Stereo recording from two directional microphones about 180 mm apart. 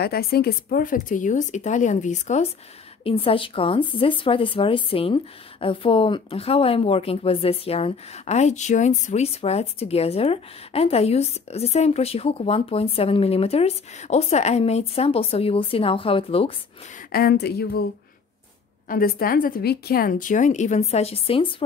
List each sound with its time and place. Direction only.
0.0 s a woman's voice: 60° left (ahead or behind); by 2.4 s 40° left (ahead or behind)
3.0 s speech: 30° left (ahead or behind)
17.1 s speech: 60° left (ahead or behind)
18.9 s a woman's voice: 55° left (ahead or behind); by 21.6 s 30° left (ahead or behind)